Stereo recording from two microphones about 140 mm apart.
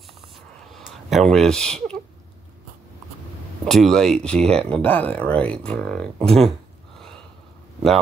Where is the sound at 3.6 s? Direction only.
Centre (ahead or behind).